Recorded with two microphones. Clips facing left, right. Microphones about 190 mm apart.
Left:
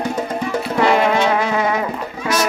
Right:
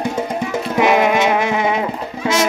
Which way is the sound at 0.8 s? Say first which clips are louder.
Right 1 dB; 15° right (ahead or behind).